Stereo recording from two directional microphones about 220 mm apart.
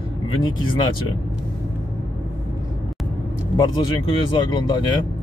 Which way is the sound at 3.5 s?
20° left (ahead or behind).